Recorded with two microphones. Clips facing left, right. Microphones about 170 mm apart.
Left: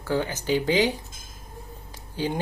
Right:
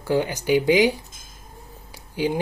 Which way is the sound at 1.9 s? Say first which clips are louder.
Right 4 dB; 10° right (ahead or behind).